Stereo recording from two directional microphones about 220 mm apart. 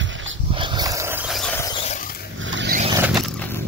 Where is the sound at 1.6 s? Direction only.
20° left (ahead or behind).